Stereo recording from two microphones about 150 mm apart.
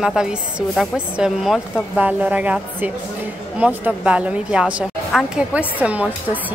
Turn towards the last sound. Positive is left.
turn(degrees=-10)  # may be behind; listen again after turning